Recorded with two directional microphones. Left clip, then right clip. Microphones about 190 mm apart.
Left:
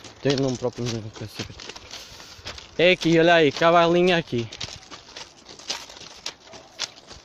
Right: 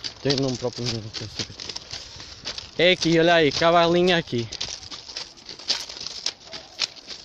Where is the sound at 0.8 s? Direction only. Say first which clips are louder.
Right 1 dB; 5° left (ahead or behind).